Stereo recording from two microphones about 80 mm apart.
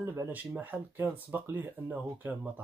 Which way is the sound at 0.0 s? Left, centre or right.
Right.